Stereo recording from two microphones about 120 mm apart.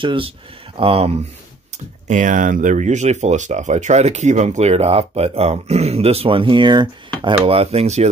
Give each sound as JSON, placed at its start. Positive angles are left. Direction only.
{"t": 0.0, "sound": "speech", "side_deg": -45}
{"t": 2.0, "sound": "speech", "side_deg": -90}